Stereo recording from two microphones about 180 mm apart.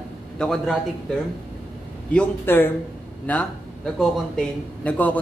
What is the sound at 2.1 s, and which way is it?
A man's voice, 10° left (ahead or behind).